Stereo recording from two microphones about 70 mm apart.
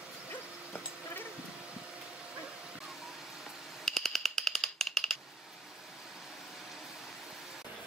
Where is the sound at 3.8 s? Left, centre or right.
Centre.